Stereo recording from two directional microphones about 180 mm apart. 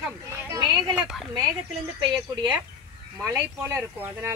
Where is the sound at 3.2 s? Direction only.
15° right (ahead or behind).